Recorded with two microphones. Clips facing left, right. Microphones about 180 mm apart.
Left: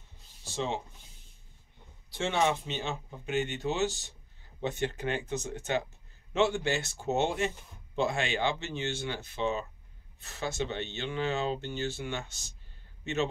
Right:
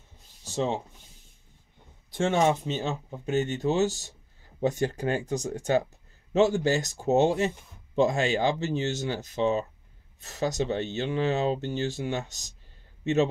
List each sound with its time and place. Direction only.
0.4 s rub: 40° right (ahead or behind)
2.1 s a man's voice: 45° right (ahead or behind)